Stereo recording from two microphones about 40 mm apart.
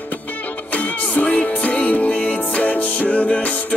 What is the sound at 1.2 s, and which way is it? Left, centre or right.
Music, left.